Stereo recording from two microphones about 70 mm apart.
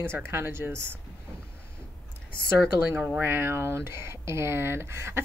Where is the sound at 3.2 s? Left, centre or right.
Right.